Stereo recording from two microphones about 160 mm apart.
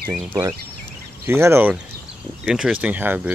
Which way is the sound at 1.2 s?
15° right (ahead or behind).